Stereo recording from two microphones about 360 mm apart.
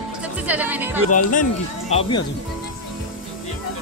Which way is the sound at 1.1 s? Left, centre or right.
Left.